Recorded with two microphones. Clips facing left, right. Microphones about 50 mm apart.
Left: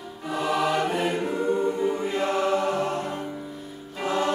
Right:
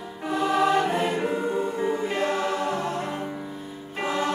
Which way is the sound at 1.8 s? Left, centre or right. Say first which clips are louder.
Even; right.